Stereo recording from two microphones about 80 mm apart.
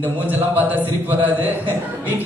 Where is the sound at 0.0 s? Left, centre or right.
Right.